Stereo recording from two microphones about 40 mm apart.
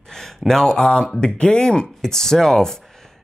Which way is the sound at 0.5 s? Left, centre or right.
Centre.